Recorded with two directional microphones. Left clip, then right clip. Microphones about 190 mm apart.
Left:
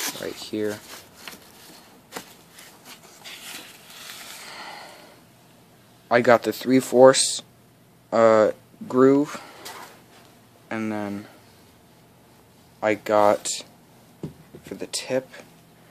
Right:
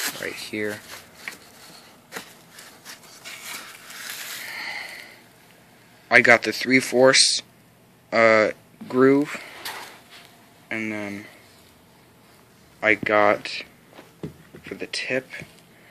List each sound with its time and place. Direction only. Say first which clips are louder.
0.0 s speech: right 1 dB; 10° left (ahead or behind)
4.5 s a sound: right 7 dB; 20° left (ahead or behind)
6.0 s speech: right 2 dB; 10° left (ahead or behind)
10.7 s speech: even; 20° left (ahead or behind)
12.8 s speech: right 1 dB; 20° left (ahead or behind)